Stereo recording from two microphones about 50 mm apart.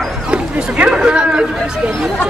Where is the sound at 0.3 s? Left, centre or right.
Right.